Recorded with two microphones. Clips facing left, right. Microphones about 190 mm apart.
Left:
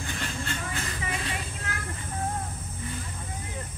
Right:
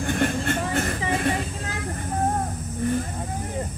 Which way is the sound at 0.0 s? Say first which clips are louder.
Right 11 dB; 55° right (ahead or behind).